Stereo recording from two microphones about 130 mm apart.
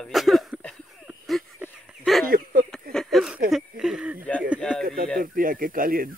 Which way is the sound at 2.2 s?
90° right.